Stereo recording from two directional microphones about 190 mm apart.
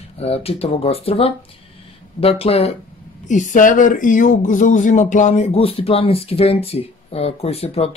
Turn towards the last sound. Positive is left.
turn(degrees=30)  # may be behind; listen again after turning